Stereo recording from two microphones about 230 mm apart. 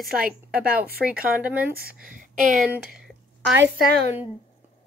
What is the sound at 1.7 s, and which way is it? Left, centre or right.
Speech, right.